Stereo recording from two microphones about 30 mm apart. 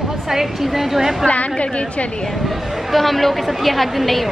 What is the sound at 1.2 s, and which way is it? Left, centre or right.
Speech, left.